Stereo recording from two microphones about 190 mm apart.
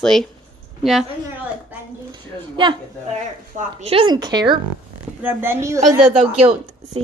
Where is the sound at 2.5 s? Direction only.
25° right (ahead or behind).